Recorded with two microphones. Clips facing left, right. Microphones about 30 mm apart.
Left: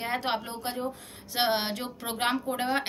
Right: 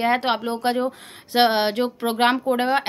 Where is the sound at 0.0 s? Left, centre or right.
Right.